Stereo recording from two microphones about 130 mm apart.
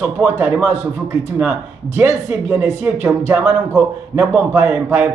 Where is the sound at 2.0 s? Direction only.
20° right (ahead or behind).